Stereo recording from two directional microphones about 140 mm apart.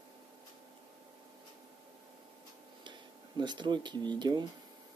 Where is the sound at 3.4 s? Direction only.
35° right (ahead or behind).